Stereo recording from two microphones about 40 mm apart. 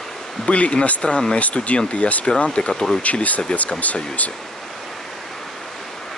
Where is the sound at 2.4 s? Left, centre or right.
Left.